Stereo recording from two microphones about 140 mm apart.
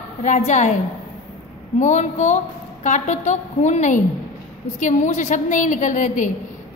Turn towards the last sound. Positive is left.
turn(degrees=65)  # may be behind; listen again after turning